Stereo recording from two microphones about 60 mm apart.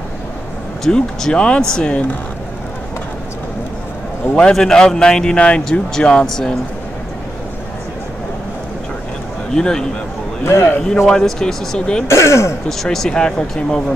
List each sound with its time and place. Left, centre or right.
0.8 s a man's voice: centre
4.4 s a man's voice: centre
9.5 s a man's voice: centre
10.4 s speech: left
11.1 s a man's voice: centre
12.1 s speech: left
12.6 s a man's voice: centre